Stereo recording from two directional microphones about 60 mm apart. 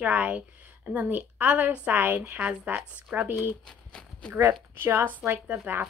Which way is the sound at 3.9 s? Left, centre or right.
Centre.